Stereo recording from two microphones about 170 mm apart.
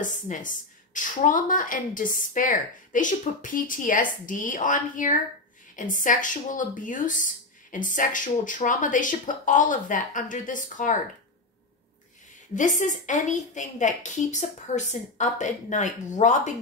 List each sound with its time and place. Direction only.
0.0 s a woman's voice: 50° left (ahead or behind)
12.5 s a woman's voice: 45° left (ahead or behind)